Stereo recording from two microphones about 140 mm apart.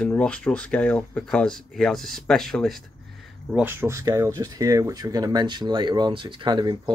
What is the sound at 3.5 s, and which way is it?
Speech, 15° right (ahead or behind).